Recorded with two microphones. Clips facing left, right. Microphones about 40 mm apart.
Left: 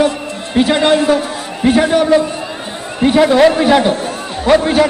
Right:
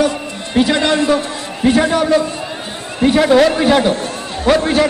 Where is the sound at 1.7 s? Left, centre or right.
Left.